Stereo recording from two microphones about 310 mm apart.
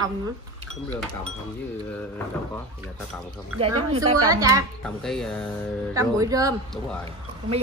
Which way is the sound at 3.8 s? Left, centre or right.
Centre.